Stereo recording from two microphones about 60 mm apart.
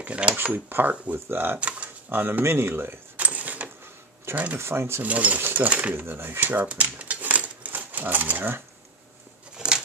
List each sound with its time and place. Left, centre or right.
0.0 s speech: right
0.4 s speech: right
1.6 s speech: right
2.0 s speech: right
3.2 s a sound: right
4.6 s speech: right
5.0 s speech: right
5.9 s speech: right
6.7 s typewriter: right
9.6 s a sound: centre